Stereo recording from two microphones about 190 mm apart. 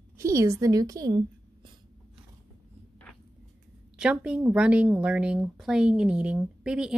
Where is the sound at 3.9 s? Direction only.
5° right (ahead or behind).